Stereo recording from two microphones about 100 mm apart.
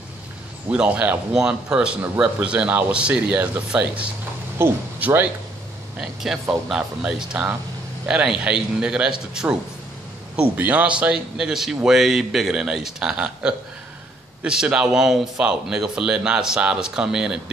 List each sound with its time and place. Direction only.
0.7 s speech: 10° right (ahead or behind)
5.9 s speech: 5° right (ahead or behind)